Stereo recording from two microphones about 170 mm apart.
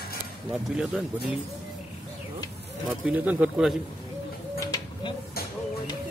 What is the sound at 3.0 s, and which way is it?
Speech, 10° right (ahead or behind).